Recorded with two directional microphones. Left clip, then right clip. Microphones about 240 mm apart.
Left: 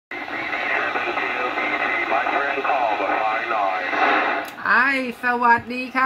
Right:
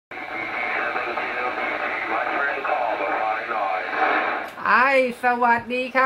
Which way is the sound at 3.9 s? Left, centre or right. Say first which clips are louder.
Left 3 dB; left.